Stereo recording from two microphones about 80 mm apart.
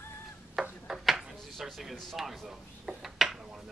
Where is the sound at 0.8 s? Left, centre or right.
Centre.